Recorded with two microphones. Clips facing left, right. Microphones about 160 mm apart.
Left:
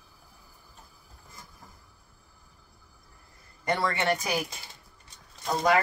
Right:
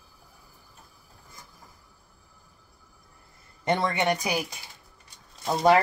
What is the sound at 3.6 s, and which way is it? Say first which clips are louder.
Speech: right 3 dB; 20° right (ahead or behind).